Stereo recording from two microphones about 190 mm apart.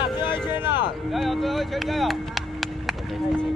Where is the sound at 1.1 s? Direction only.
Centre (ahead or behind).